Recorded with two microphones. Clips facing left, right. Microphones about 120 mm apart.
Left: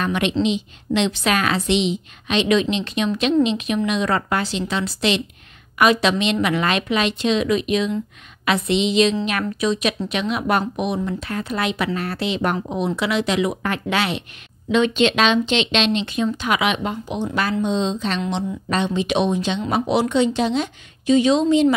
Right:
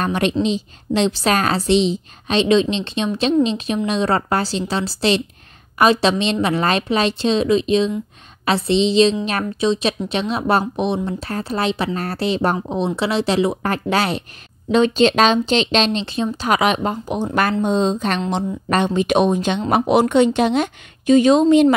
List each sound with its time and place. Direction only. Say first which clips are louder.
0.0 s a woman's voice: right 1 dB; 40° right (ahead or behind)